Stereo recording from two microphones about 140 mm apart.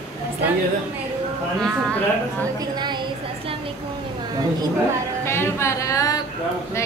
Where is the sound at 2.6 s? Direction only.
30° right (ahead or behind).